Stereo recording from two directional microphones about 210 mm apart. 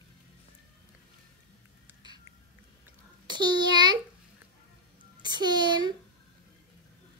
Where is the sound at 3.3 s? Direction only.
20° right (ahead or behind).